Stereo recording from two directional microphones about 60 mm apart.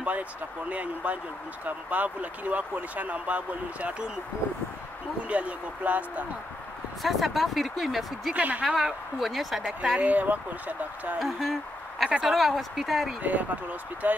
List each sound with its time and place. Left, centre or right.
0.7 s speech: right
5.3 s speech: right
7.0 s speech: centre
8.4 s speech: right
8.6 s speech: centre
9.9 s speech: right
11.1 s speech: centre
13.2 s speech: right